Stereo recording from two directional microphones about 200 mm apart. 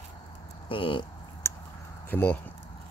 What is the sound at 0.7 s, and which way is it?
Speech, 25° left (ahead or behind).